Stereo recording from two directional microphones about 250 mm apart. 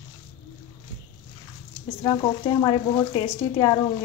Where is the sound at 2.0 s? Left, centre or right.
Centre.